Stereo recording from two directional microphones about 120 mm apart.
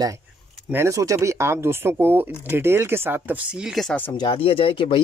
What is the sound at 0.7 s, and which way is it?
Speech, 25° right (ahead or behind).